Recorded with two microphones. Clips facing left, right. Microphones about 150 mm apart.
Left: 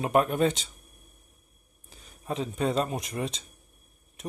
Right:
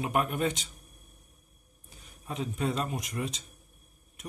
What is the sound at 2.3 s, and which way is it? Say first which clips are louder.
Speech: left 4 dB; 30° left (ahead or behind).